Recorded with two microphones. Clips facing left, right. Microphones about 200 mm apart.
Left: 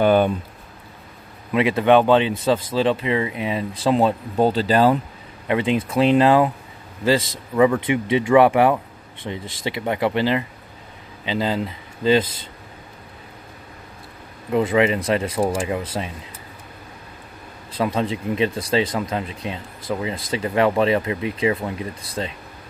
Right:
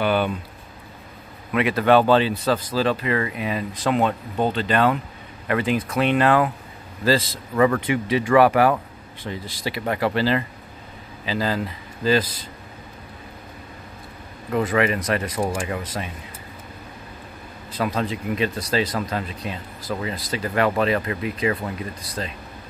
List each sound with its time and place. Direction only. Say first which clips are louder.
0.0 s speech: left 5 dB; 45° left (ahead or behind)
1.5 s speech: left 2 dB; 25° left (ahead or behind)
5.5 s a man's voice: left 2 dB; 25° left (ahead or behind)
7.8 s speech: left 2 dB; 25° left (ahead or behind)
14.5 s speech: left 3 dB; 25° left (ahead or behind)
17.7 s speech: left 2 dB; 25° left (ahead or behind)